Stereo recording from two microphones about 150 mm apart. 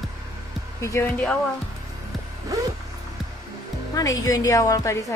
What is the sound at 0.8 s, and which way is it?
Speech, 20° left (ahead or behind).